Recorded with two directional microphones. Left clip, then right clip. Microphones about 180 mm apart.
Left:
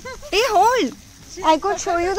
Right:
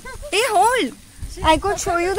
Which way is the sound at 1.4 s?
15° right (ahead or behind).